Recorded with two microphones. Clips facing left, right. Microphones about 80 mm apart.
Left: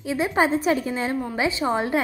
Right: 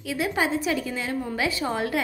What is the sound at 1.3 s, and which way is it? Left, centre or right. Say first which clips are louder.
Speech: left 4 dB; left.